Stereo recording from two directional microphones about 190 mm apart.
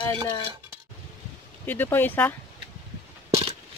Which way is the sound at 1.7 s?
10° left (ahead or behind).